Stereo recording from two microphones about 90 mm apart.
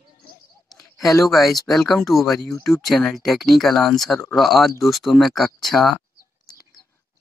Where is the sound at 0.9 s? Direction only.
35° left (ahead or behind).